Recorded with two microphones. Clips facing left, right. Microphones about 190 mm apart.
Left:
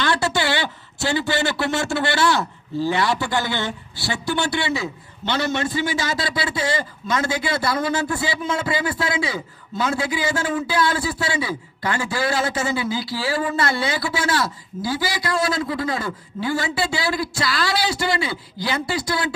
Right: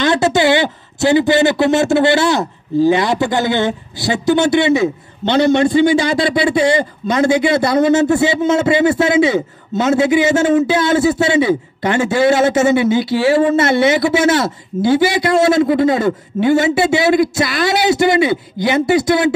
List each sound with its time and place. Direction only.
0.0 s speech: 20° right (ahead or behind)